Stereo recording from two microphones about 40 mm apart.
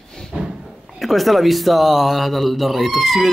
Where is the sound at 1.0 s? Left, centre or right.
Centre.